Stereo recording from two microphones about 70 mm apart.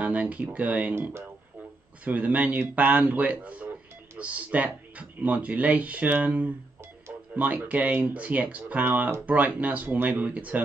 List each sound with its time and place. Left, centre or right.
0.0 s speech: right
2.0 s speech: right